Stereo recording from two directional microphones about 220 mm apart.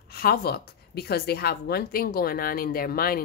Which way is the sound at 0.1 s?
45° left (ahead or behind).